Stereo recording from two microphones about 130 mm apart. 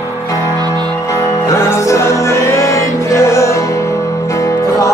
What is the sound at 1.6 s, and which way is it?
Music, 20° left (ahead or behind).